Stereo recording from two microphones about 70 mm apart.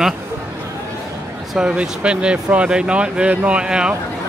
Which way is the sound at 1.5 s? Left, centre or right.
Centre.